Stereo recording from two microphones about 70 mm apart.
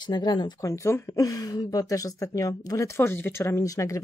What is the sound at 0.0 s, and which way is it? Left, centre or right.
Speech, left.